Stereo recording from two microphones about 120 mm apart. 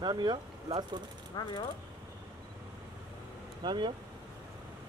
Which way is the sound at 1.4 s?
35° left (ahead or behind).